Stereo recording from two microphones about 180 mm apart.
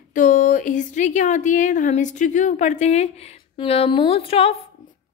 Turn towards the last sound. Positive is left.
turn(degrees=30)  # may be behind; listen again after turning